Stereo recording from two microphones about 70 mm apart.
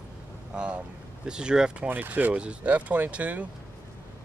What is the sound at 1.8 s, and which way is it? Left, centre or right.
Speech, right.